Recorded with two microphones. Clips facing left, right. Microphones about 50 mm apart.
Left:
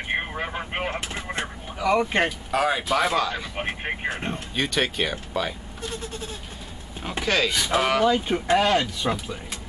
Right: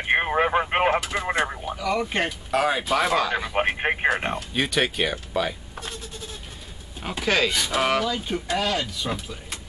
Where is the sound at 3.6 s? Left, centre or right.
Right.